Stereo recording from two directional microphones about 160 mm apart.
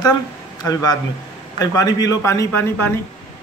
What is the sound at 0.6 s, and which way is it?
A man's voice, 25° left (ahead or behind).